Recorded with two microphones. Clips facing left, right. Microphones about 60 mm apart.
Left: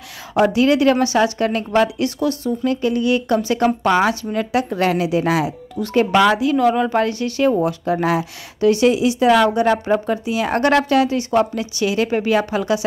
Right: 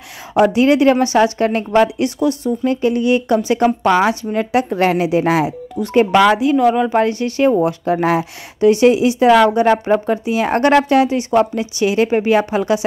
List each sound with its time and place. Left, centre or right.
0.3 s a woman's voice: right
6.5 s speech: centre
7.0 s a woman's voice: right